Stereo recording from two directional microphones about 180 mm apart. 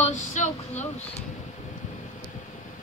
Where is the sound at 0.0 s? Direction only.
40° left (ahead or behind).